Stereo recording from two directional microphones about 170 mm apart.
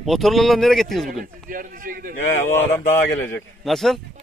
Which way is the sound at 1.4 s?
50° right (ahead or behind).